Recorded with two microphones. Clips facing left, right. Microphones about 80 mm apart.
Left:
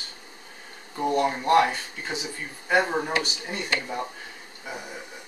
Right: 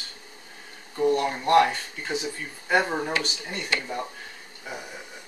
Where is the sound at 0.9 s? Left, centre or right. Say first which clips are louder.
Right 1 dB; centre.